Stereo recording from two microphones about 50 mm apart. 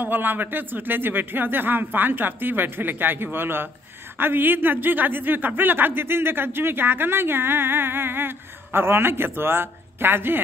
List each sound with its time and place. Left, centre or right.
0.0 s speech: right